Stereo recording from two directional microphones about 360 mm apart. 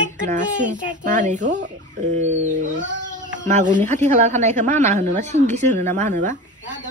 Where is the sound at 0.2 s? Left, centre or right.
Right.